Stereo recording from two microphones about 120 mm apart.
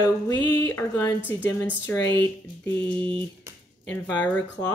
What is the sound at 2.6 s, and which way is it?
Music, 15° left (ahead or behind).